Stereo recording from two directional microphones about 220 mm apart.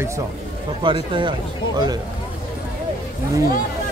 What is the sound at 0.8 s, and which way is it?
Speech, 20° right (ahead or behind).